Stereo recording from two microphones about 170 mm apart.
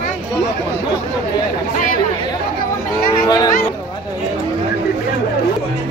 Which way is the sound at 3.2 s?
20° left (ahead or behind).